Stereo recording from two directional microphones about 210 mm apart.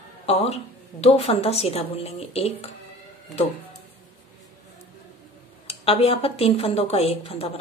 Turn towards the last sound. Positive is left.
turn(degrees=30)  # may be behind; listen again after turning